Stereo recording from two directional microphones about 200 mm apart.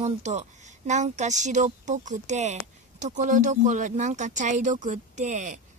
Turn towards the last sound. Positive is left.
turn(degrees=-40)  # may be behind; listen again after turning